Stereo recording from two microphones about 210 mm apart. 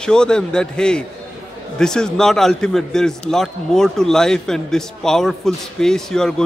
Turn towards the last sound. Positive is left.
turn(degrees=5)  # may be behind; listen again after turning